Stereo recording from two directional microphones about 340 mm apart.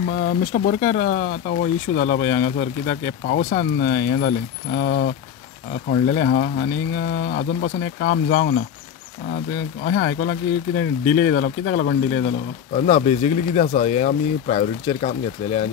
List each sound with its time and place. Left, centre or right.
0.2 s speech: left
9.8 s speech: left